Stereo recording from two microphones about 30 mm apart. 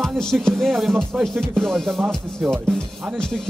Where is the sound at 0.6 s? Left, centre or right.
Centre.